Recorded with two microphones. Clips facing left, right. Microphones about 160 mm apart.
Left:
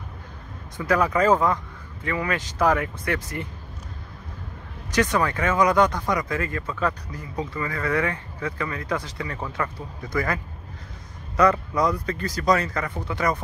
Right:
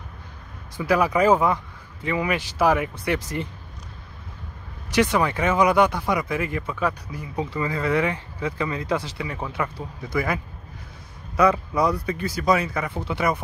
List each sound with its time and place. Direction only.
0.7 s speech: 10° right (ahead or behind)
5.1 s speech: 15° right (ahead or behind)
7.6 s speech: 20° right (ahead or behind)